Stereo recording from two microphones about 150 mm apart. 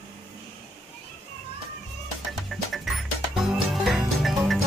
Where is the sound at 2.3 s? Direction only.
Centre (ahead or behind).